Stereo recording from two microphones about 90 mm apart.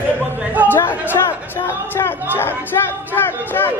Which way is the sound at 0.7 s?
20° left (ahead or behind).